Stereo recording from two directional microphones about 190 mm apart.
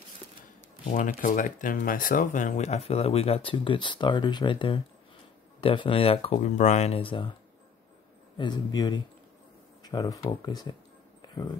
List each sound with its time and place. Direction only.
0.8 s speech: 40° left (ahead or behind); by 7.3 s 25° left (ahead or behind)
8.4 s speech: 25° left (ahead or behind)